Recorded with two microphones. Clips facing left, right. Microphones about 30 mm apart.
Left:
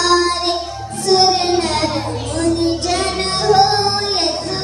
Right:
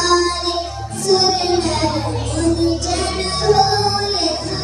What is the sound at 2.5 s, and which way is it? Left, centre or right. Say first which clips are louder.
Music: left 1 dB; left.